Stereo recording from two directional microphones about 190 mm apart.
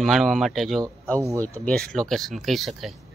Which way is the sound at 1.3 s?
15° right (ahead or behind).